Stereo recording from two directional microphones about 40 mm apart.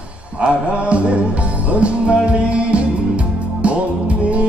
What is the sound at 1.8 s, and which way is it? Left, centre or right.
Music, right.